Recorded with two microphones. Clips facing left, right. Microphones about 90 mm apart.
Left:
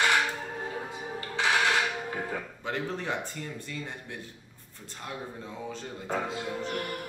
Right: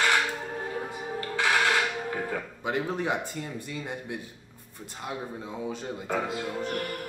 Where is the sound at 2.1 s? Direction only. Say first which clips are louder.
Right 2 dB; 25° right (ahead or behind).